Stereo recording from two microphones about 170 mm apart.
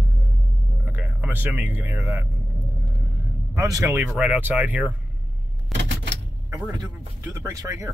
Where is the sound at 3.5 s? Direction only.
20° right (ahead or behind).